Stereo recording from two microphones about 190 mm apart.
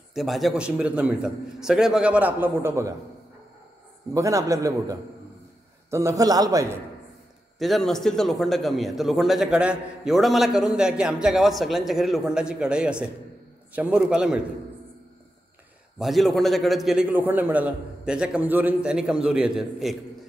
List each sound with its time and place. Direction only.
0.1 s a man's voice: centre (ahead or behind)
4.1 s a man's voice: 15° right (ahead or behind)
7.5 s a man's voice: centre (ahead or behind)
16.0 s a man's voice: centre (ahead or behind)